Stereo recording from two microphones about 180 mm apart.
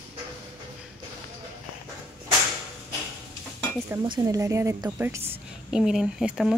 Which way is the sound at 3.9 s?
20° right (ahead or behind).